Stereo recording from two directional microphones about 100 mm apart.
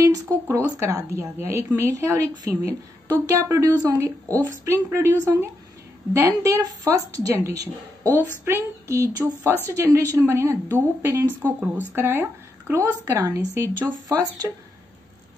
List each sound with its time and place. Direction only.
0.0 s a woman's voice: 35° right (ahead or behind)